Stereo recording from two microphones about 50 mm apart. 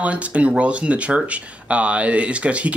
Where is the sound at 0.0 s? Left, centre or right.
Right.